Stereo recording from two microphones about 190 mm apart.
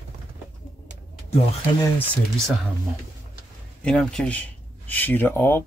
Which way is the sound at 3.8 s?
5° left (ahead or behind).